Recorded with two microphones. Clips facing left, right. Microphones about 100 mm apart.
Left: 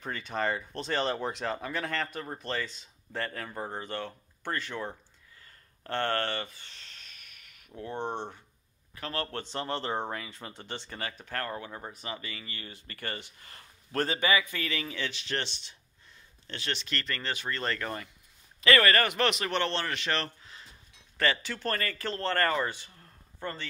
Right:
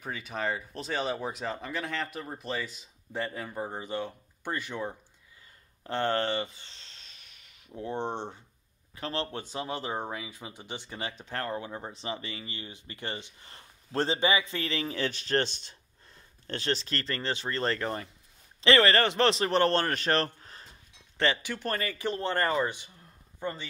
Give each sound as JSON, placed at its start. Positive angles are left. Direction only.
{"t": 0.0, "sound": "speech", "side_deg": -5}
{"t": 6.7, "sound": "a sound", "side_deg": -25}
{"t": 8.0, "sound": "speech", "side_deg": 10}
{"t": 8.9, "sound": "speech", "side_deg": -25}
{"t": 9.3, "sound": "speech", "side_deg": -10}
{"t": 21.2, "sound": "speech", "side_deg": -20}